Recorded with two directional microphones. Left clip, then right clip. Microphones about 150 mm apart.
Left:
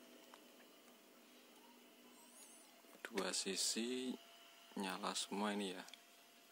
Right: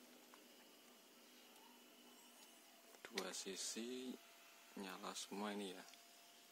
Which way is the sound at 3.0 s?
25° left (ahead or behind).